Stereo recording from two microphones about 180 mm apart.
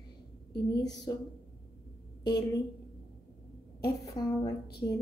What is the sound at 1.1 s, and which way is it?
Speech, 20° left (ahead or behind).